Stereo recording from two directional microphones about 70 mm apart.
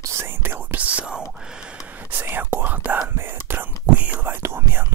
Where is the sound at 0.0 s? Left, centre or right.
Right.